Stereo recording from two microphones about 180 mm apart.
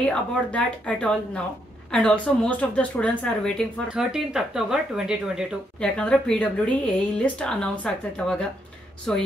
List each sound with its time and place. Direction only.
0.0 s a woman's voice: 5° left (ahead or behind)